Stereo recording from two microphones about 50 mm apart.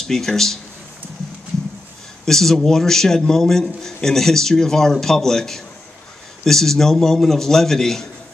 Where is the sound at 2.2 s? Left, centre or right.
Centre.